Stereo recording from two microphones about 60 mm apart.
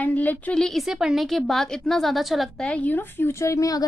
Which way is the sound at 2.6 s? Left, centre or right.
Left.